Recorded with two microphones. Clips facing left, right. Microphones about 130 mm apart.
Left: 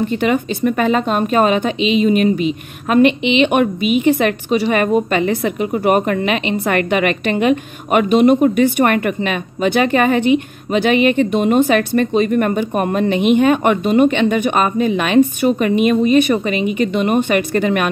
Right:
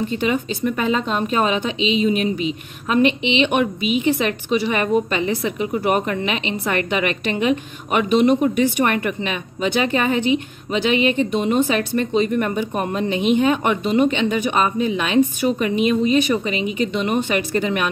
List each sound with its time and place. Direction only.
0.1 s a woman's voice: 55° left (ahead or behind)